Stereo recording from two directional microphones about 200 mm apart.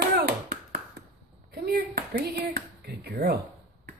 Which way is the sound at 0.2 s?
50° right (ahead or behind).